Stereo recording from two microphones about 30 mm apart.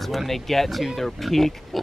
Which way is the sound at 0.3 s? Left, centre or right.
Centre.